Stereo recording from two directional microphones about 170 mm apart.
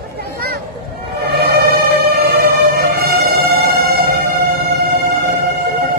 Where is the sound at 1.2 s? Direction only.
70° right (ahead or behind).